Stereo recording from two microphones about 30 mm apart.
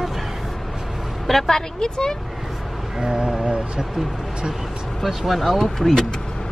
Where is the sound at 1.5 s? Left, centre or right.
Left.